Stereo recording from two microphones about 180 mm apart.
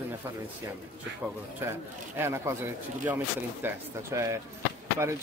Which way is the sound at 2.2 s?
15° right (ahead or behind).